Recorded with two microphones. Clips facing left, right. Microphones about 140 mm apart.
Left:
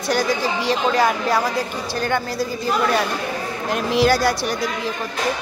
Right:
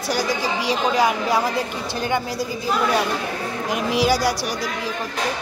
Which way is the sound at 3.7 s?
10° right (ahead or behind).